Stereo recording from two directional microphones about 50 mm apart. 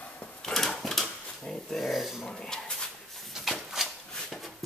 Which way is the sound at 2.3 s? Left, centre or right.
Centre.